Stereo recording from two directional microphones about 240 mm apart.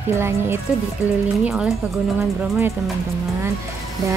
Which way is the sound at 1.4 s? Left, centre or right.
Centre.